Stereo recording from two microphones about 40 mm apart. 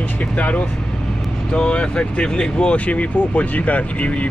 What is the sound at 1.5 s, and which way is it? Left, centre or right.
Speech, left.